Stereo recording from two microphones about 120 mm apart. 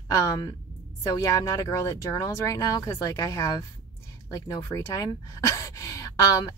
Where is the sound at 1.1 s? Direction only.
25° left (ahead or behind).